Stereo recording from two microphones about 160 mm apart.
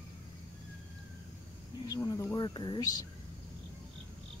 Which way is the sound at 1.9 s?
20° left (ahead or behind).